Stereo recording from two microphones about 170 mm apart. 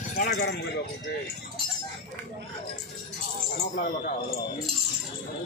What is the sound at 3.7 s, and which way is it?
Speech, 55° left (ahead or behind).